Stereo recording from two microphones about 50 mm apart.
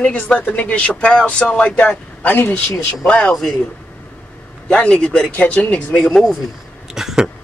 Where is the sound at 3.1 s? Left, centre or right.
Left.